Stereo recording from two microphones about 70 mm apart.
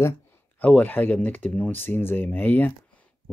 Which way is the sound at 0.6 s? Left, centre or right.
Left.